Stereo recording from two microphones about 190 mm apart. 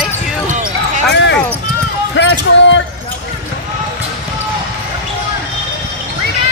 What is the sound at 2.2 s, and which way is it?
Basketball bounce, 70° left (ahead or behind).